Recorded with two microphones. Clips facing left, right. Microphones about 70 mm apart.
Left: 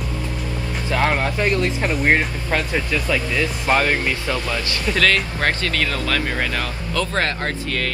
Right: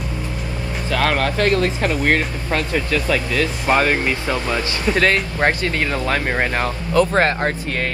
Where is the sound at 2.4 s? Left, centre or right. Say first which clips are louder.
Right 1 dB; left.